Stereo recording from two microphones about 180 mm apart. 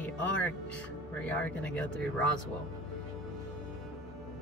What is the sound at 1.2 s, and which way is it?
Speech, 5° left (ahead or behind).